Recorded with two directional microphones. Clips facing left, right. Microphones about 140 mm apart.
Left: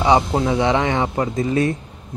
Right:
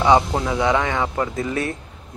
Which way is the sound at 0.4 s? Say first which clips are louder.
Left 2 dB; 25° left (ahead or behind).